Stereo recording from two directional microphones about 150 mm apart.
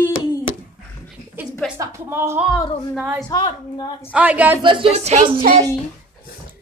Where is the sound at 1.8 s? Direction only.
15° right (ahead or behind).